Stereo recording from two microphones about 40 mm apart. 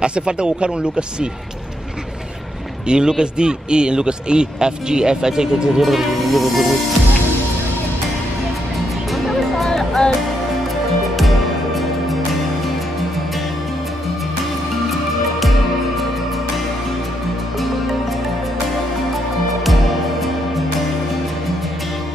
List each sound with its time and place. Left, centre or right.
0.0 s a man's voice: right
2.9 s a man's voice: centre
5.8 s music: centre
9.1 s music: centre
9.7 s music: centre
11.1 s music: centre
19.6 s music: centre